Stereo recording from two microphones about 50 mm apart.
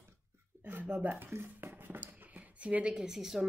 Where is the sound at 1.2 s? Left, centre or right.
Right.